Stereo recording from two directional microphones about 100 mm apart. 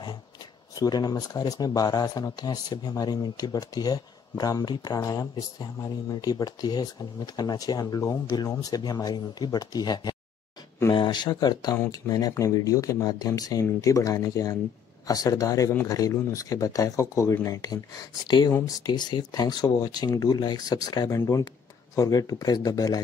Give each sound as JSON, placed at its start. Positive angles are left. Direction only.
{"t": 0.7, "sound": "speech", "side_deg": 40}
{"t": 17.6, "sound": "speech", "side_deg": 40}